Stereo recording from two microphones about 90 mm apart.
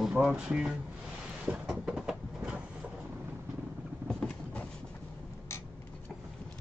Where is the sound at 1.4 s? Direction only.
10° right (ahead or behind).